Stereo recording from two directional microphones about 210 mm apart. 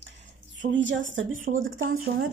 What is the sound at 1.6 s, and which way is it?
Speech, 70° right (ahead or behind).